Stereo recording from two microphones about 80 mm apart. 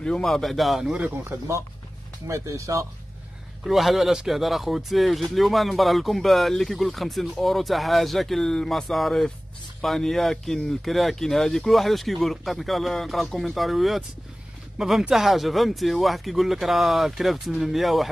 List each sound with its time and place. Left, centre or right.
0.0 s speech: centre
2.2 s speech: right
3.6 s speech: centre